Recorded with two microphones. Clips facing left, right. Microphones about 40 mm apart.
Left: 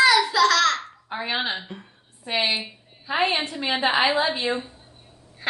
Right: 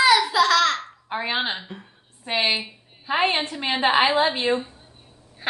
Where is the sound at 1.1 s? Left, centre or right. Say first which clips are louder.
Right 2 dB; right.